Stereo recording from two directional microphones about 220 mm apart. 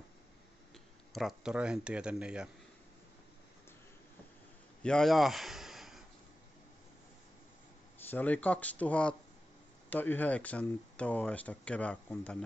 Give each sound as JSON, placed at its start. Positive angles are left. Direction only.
{"t": 1.1, "sound": "speech", "side_deg": 0}
{"t": 4.8, "sound": "a sound", "side_deg": 0}
{"t": 8.1, "sound": "speech", "side_deg": 5}